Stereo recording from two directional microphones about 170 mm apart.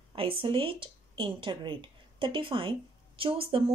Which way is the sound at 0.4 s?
30° right (ahead or behind).